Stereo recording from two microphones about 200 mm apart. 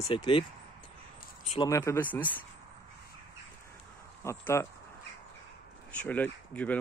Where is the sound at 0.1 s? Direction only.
25° left (ahead or behind).